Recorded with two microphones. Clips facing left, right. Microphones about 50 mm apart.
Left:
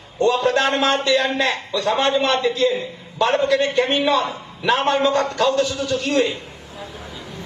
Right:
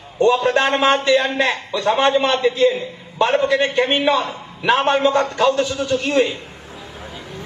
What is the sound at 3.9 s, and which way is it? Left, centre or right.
A man's voice, right.